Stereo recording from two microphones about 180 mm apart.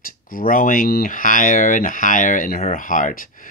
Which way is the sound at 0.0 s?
50° left (ahead or behind).